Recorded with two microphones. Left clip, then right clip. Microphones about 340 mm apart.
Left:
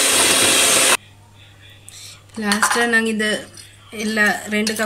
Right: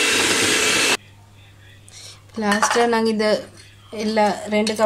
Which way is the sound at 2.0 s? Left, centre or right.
Centre.